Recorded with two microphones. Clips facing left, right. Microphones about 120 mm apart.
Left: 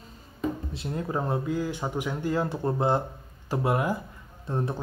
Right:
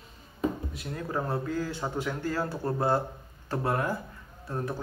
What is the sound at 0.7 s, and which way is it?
Speech, 20° left (ahead or behind).